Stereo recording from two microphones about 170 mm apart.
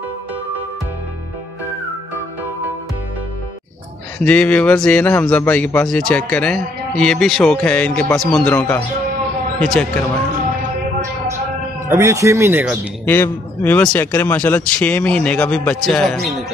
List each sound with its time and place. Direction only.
4.2 s a man's voice: 5° left (ahead or behind)
11.9 s speech: 15° right (ahead or behind)
13.0 s a man's voice: 10° left (ahead or behind)